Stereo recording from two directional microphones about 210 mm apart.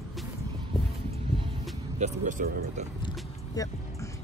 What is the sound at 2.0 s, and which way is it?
Speech, 40° right (ahead or behind).